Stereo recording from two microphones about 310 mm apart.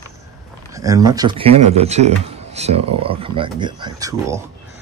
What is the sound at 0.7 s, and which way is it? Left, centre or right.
Speech, centre.